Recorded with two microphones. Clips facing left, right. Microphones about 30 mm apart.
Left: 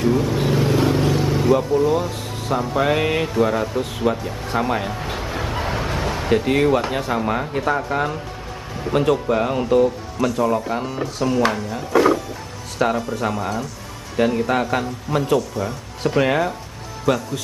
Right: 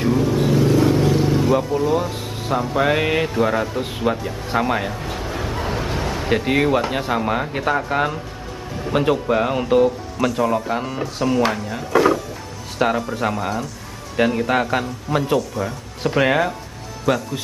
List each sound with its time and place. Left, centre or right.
0.1 s vehicle: centre
0.4 s vehicle: left
0.9 s vehicle: centre
1.5 s a man's voice: centre
5.0 s bow-wow: centre
6.2 s a man's voice: centre
12.7 s a man's voice: centre
17.1 s a man's voice: centre